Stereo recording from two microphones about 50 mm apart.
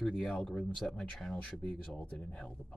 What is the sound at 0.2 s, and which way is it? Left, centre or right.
Speech, centre.